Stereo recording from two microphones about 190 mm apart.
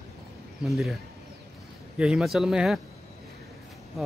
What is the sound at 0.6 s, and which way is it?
Speech, centre (ahead or behind).